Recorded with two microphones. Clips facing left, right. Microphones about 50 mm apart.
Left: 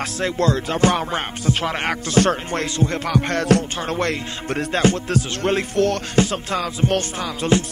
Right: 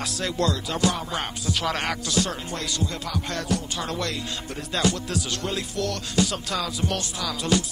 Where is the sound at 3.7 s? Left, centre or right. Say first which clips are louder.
Left 6 dB; left.